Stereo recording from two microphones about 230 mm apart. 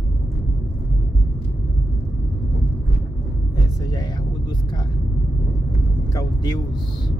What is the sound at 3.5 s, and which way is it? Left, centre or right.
Music, centre.